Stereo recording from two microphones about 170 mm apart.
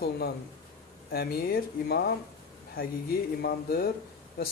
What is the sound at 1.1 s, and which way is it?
Speech, 65° left (ahead or behind).